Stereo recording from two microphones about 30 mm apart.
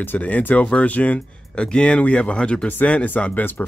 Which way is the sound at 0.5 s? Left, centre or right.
Left.